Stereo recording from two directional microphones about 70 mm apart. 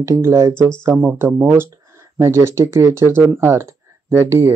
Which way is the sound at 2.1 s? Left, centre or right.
Right.